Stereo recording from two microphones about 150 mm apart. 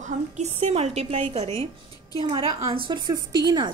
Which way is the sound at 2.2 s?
30° right (ahead or behind).